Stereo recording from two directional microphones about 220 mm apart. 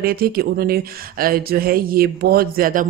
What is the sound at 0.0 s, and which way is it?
Speech, 40° right (ahead or behind).